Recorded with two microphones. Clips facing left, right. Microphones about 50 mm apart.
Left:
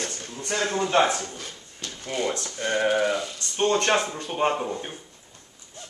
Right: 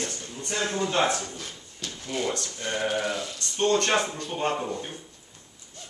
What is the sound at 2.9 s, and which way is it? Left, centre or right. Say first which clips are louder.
Speech: left 5 dB; centre.